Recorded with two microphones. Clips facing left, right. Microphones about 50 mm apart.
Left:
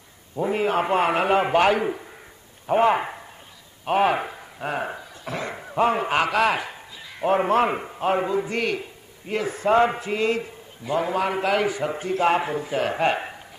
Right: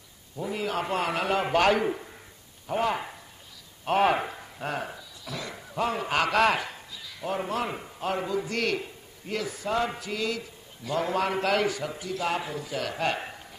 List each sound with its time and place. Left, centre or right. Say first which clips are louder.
0.4 s a man's voice: left 8 dB; left; by 2.0 s centre
2.6 s speech: left 8 dB; left
3.8 s speech: left 3 dB; centre
4.8 s a sound: left 7 dB; left
6.1 s a man's voice: left 2 dB; centre
7.2 s a man's voice: left 10 dB; left
8.6 s a man's voice: left 2 dB; centre
9.3 s a man's voice: left 8 dB; left
10.8 s a man's voice: left 4 dB; centre
11.8 s a man's voice: left 8 dB; left